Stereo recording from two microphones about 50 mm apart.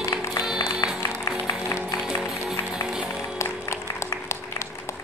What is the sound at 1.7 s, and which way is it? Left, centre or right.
Music, left.